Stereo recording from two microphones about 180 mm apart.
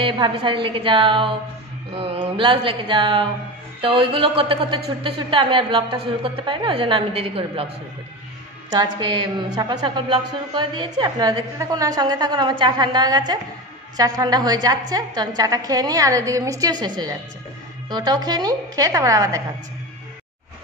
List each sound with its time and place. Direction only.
0.0 s a woman's voice: 30° right (ahead or behind)
2.0 s music: 30° right (ahead or behind)
3.8 s a woman's voice: 30° right (ahead or behind)
8.7 s a woman's voice: 25° right (ahead or behind)